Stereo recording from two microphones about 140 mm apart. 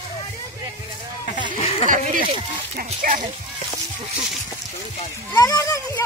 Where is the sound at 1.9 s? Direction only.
70° right (ahead or behind).